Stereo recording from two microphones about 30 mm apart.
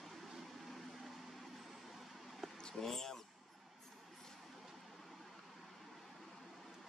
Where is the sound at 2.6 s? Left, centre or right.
Centre.